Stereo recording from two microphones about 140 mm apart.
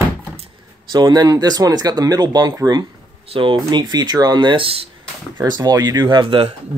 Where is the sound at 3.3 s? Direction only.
35° right (ahead or behind).